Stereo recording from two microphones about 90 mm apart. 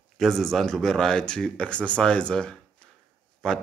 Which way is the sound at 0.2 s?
5° left (ahead or behind).